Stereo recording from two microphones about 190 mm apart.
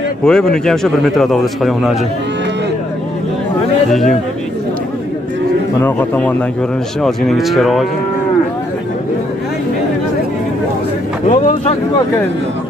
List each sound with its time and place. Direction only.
0.2 s a man's voice: 5° left (ahead or behind)
5.8 s a man's voice: 10° left (ahead or behind)
11.2 s a sound: 40° left (ahead or behind)